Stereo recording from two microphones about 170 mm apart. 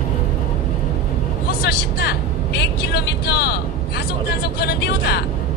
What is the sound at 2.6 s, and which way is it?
Vehicle, 70° left (ahead or behind).